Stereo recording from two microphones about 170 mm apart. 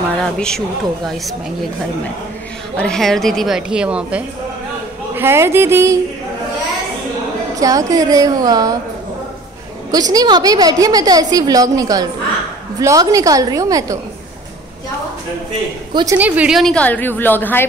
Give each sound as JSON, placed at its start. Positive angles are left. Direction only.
{"t": 0.2, "sound": "speech", "side_deg": 5}
{"t": 2.8, "sound": "speech", "side_deg": 5}
{"t": 7.5, "sound": "a woman's voice", "side_deg": -20}
{"t": 9.8, "sound": "a woman's voice", "side_deg": -20}
{"t": 15.9, "sound": "a woman's voice", "side_deg": -25}
{"t": 16.2, "sound": "a woman's voice", "side_deg": -10}